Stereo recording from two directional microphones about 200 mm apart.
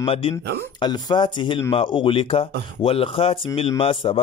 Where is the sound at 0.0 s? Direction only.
30° left (ahead or behind).